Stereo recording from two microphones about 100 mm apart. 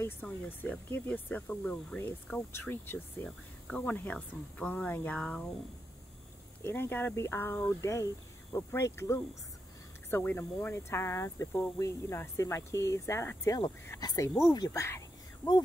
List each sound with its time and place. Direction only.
0.0 s speech: 20° left (ahead or behind)
3.3 s speech: 5° left (ahead or behind)
3.8 s speech: 15° left (ahead or behind)
6.6 s speech: 20° left (ahead or behind)